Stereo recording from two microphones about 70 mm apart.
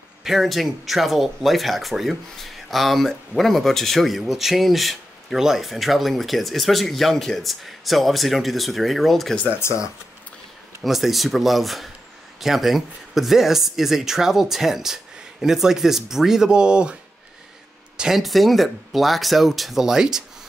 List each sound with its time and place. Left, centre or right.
0.2 s speech: centre
9.6 s speech: left
10.8 s speech: centre
17.9 s speech: centre